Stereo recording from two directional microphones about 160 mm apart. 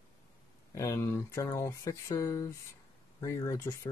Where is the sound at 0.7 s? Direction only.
20° left (ahead or behind).